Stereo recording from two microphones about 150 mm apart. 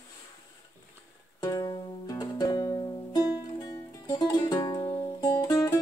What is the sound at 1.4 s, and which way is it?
Music, 25° left (ahead or behind).